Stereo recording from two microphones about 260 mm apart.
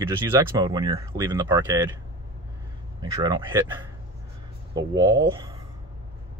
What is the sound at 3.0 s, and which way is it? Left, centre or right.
Speech, centre.